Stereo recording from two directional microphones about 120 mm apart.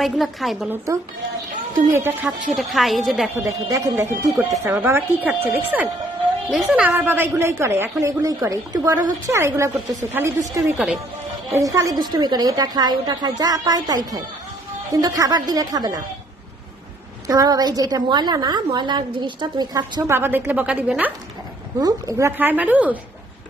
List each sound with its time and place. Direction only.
0.0 s a woman's voice: centre (ahead or behind)
0.9 s a woman's voice: 25° right (ahead or behind)
2.5 s a woman's voice: centre (ahead or behind)
3.3 s a woman's voice: 30° right (ahead or behind)
17.3 s a woman's voice: 35° right (ahead or behind)
20.2 s a woman's voice: 15° right (ahead or behind)
21.7 s a woman's voice: 30° right (ahead or behind)
22.4 s a woman's voice: 15° right (ahead or behind)